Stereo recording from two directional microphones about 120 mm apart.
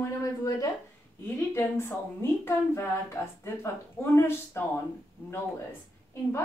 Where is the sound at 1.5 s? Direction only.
20° left (ahead or behind).